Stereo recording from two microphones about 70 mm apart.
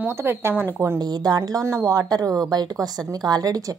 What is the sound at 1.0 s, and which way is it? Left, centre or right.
Speech, right.